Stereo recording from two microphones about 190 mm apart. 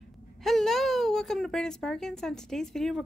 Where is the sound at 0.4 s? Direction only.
Centre (ahead or behind).